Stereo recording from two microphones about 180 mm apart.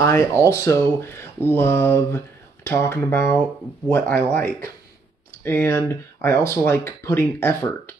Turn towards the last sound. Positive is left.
turn(degrees=15)  # may be behind; listen again after turning